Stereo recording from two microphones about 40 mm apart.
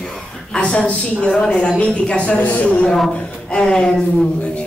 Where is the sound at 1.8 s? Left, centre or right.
Left.